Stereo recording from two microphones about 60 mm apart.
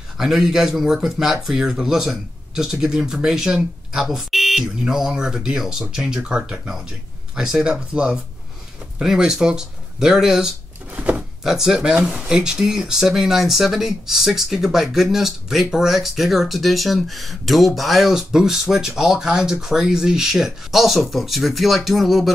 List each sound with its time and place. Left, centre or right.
0.2 s speech: centre
7.9 s speech: centre
11.0 s a sound: right
11.4 s speech: centre